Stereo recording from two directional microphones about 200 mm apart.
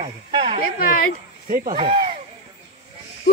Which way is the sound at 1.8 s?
25° right (ahead or behind).